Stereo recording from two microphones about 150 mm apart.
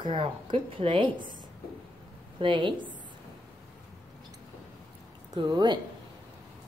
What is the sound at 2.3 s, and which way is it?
Speech, 35° right (ahead or behind).